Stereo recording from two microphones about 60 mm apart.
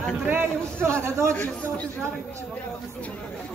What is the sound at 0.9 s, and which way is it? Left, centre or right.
Speech, right.